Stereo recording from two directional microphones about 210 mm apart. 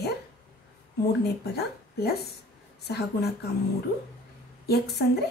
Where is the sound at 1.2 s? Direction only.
50° left (ahead or behind).